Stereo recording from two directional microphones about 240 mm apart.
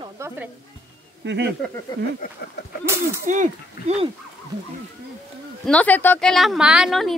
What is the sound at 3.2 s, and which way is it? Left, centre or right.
Speech, right.